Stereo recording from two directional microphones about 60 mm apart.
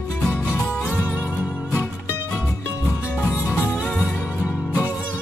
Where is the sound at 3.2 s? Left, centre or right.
Left.